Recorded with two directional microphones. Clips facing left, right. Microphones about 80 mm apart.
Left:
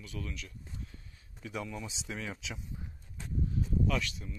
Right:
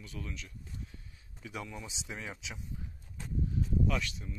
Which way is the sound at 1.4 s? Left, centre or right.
Centre.